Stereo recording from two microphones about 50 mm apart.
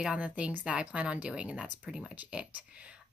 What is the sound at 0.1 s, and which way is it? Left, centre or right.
Speech, right.